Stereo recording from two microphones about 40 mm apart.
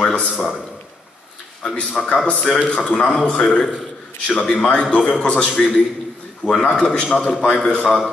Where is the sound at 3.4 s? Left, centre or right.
Centre.